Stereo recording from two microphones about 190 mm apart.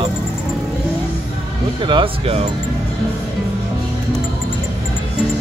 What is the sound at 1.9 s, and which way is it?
Speech, 30° right (ahead or behind).